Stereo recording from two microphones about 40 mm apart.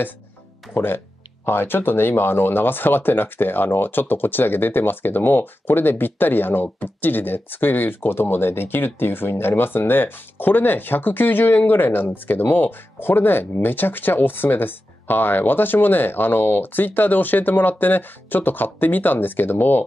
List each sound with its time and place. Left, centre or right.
0.7 s speech: left